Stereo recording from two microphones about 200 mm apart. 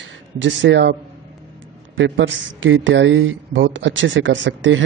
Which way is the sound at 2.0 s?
65° right (ahead or behind).